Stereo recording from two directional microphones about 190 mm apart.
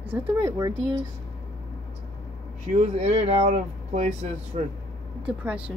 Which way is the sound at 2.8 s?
35° right (ahead or behind).